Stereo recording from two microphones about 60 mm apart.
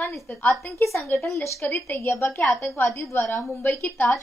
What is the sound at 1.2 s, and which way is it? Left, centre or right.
Speech, left.